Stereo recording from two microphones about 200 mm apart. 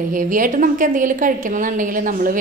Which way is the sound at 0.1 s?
40° right (ahead or behind).